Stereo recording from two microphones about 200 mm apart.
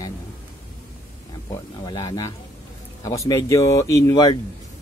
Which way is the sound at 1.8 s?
20° left (ahead or behind).